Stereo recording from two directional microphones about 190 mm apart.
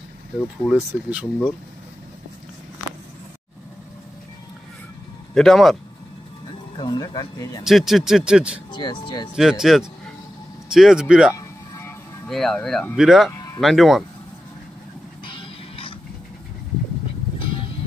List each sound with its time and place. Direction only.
0.7 s speech: centre (ahead or behind)
5.3 s speech: centre (ahead or behind)
6.8 s speech: 20° left (ahead or behind)
7.6 s speech: centre (ahead or behind)
8.7 s speech: 25° left (ahead or behind)
9.3 s speech: 5° right (ahead or behind)
15.2 s music: 25° left (ahead or behind)
17.4 s music: 25° left (ahead or behind)